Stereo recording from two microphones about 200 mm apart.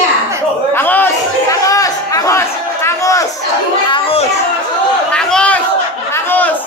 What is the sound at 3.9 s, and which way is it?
Children playing, 30° left (ahead or behind).